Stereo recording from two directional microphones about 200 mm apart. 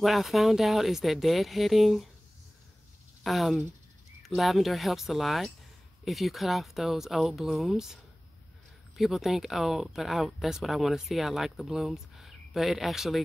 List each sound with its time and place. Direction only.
0.0 s speech: centre (ahead or behind)
3.3 s speech: centre (ahead or behind)